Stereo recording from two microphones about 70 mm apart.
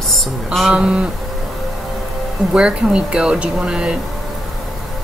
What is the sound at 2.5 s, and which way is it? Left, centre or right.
Speech, centre.